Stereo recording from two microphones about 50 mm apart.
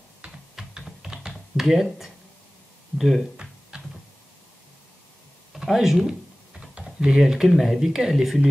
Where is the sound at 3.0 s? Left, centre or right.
Centre.